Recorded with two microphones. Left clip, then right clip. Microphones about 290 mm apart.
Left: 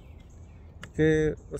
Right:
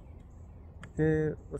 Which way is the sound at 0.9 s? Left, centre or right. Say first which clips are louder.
Left 5 dB; centre.